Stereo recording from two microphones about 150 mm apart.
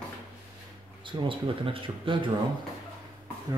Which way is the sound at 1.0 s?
35° right (ahead or behind).